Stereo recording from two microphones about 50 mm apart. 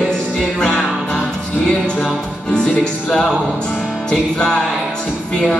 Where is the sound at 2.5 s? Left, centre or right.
Centre.